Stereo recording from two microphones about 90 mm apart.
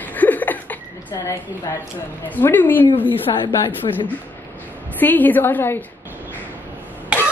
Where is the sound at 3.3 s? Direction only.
65° left (ahead or behind).